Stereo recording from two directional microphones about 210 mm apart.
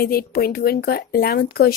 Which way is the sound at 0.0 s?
45° left (ahead or behind).